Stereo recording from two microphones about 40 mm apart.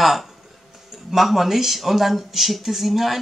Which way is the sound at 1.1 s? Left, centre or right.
Centre.